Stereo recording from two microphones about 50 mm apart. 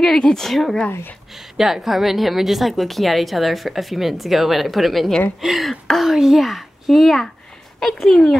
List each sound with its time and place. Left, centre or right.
0.0 s a woman's voice: centre